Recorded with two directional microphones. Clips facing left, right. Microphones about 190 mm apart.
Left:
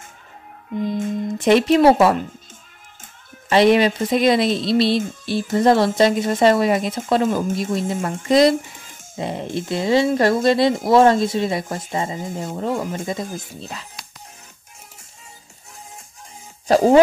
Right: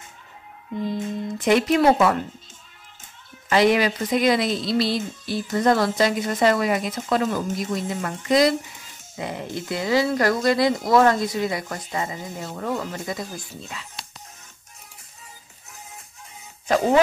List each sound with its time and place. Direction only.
1.4 s speech: 30° left (ahead or behind)
3.4 s speech: 25° left (ahead or behind)
12.3 s speech: 50° left (ahead or behind)
12.9 s speech: 25° left (ahead or behind)
13.6 s speech: 40° left (ahead or behind)
16.6 s speech: 35° left (ahead or behind)